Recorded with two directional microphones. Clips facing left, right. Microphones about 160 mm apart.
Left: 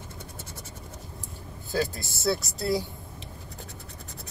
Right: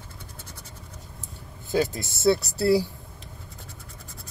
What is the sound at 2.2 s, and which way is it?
Speech, 70° right (ahead or behind).